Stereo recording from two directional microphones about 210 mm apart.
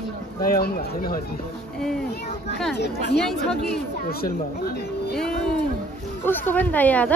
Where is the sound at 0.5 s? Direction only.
45° left (ahead or behind).